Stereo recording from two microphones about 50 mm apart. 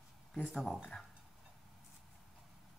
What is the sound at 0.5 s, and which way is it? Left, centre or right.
Speech, centre.